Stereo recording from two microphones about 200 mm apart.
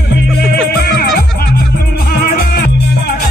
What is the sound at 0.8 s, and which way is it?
Music, 50° left (ahead or behind).